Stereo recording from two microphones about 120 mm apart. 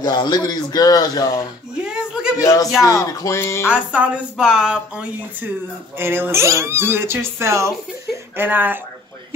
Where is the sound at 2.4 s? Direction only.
25° left (ahead or behind).